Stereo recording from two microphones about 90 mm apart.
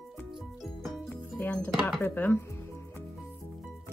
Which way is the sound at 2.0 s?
25° left (ahead or behind).